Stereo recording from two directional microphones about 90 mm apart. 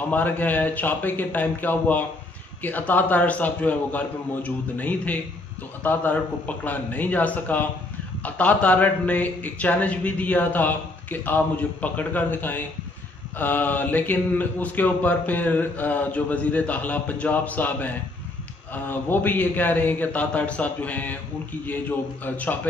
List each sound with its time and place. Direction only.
0.1 s a man's voice: 20° left (ahead or behind)